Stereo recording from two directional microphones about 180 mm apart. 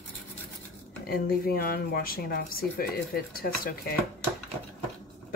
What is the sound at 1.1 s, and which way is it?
Speech, 55° left (ahead or behind).